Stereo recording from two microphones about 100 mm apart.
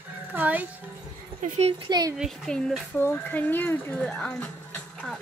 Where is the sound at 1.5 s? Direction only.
90° right.